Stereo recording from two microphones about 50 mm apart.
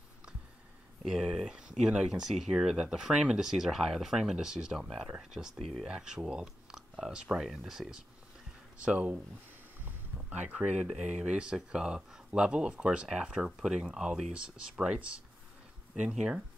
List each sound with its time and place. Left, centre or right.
1.0 s speech: centre
1.5 s speech: centre
6.3 s a sound: centre
7.1 s speech: centre
8.7 s speech: right
9.8 s boat: right
10.5 s speech: right
10.8 s speech: centre